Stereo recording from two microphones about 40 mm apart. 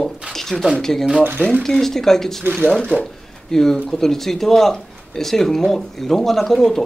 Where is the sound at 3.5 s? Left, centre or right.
Centre.